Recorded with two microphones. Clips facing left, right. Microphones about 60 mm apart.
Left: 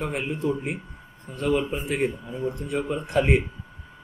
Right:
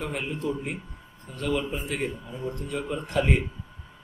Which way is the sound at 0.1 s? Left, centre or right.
Left.